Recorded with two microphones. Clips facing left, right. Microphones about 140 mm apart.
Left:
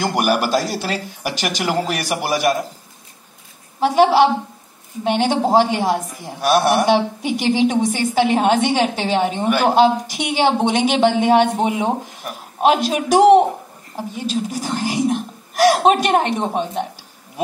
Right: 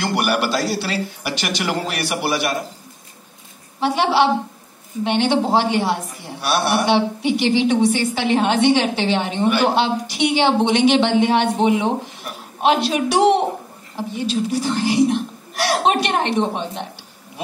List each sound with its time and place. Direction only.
0.0 s a woman's voice: 45° left (ahead or behind)
3.8 s a woman's voice: 45° left (ahead or behind)